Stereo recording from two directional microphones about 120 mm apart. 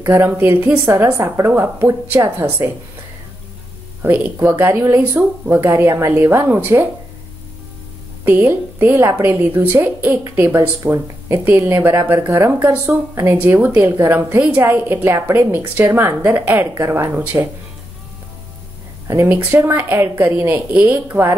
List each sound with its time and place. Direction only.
0.1 s a woman's voice: 20° right (ahead or behind)
4.0 s a woman's voice: 15° right (ahead or behind)
8.5 s a woman's voice: 20° right (ahead or behind)
19.0 s a woman's voice: 20° right (ahead or behind)